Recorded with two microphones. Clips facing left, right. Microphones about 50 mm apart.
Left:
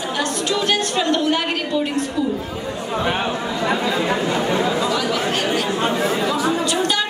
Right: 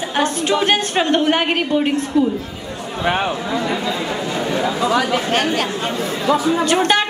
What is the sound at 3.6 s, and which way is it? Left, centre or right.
Speech, left.